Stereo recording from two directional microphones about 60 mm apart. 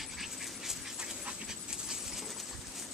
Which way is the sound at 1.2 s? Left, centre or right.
Centre.